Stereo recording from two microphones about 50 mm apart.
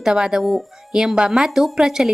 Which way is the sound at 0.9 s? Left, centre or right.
Centre.